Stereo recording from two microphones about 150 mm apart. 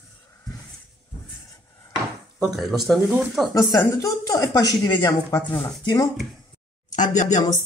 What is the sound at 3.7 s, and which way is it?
Speech, 20° left (ahead or behind).